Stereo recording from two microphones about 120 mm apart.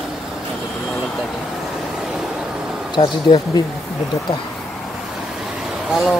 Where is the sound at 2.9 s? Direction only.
40° left (ahead or behind).